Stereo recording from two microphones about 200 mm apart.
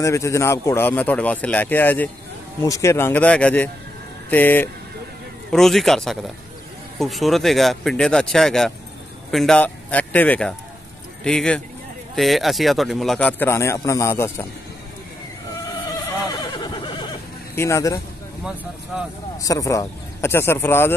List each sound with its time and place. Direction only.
0.0 s a man's voice: 15° left (ahead or behind)
15.9 s neigh: 20° left (ahead or behind)
17.6 s a man's voice: 15° left (ahead or behind)
18.4 s speech: 5° right (ahead or behind)
19.3 s a man's voice: 15° left (ahead or behind)